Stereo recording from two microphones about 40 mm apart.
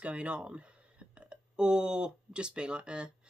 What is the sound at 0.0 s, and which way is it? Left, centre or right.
Speech, right.